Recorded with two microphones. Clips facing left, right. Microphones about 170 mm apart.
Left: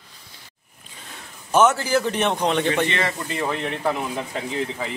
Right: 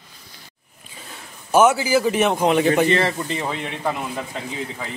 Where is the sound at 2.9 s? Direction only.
35° right (ahead or behind).